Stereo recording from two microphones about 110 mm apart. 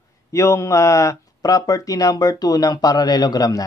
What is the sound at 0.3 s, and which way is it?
Speech, 30° left (ahead or behind).